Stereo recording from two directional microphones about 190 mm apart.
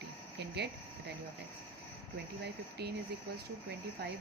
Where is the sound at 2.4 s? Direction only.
60° right (ahead or behind).